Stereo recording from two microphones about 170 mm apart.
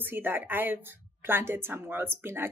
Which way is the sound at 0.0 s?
10° right (ahead or behind).